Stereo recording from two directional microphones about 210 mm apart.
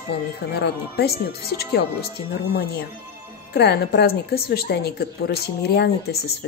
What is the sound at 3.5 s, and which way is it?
A woman's voice, 50° left (ahead or behind).